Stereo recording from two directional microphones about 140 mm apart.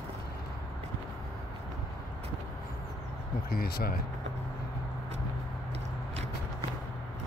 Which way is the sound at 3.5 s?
90° left.